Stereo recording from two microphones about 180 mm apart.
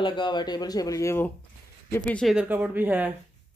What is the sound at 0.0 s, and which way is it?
Speech, 25° left (ahead or behind).